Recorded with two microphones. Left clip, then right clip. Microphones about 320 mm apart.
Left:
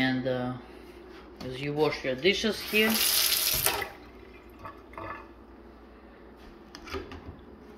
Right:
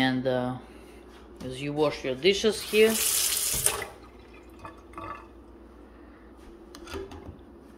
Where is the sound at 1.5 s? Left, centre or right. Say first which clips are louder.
Right 1 dB; centre.